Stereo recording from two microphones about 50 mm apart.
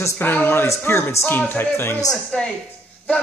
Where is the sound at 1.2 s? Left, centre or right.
Left.